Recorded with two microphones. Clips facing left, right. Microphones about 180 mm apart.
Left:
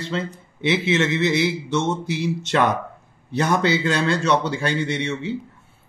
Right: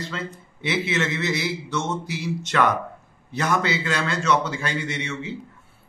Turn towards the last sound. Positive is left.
turn(degrees=30)  # may be behind; listen again after turning